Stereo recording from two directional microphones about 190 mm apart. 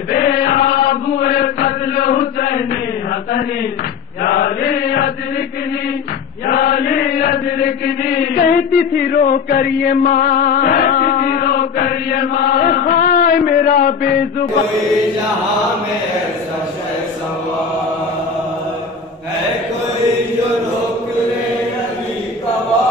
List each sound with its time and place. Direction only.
0.8 s chant: 50° left (ahead or behind)
6.4 s chant: 50° left (ahead or behind)